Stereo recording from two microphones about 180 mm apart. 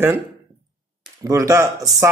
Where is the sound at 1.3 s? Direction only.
20° right (ahead or behind).